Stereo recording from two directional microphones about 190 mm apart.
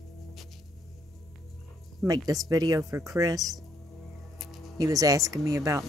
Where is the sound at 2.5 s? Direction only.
20° right (ahead or behind).